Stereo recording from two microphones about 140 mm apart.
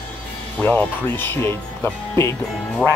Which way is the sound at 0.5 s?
15° left (ahead or behind).